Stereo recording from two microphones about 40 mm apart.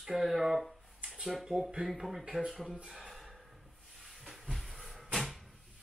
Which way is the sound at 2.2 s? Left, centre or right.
Right.